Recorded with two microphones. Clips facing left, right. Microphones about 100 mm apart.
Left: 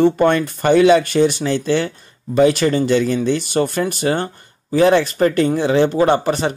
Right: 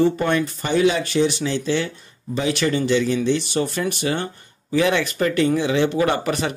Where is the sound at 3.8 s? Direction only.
40° left (ahead or behind).